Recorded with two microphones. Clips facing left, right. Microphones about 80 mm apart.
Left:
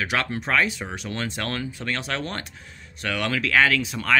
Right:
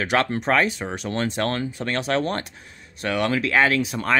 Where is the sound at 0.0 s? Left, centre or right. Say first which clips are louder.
Right 4 dB; right.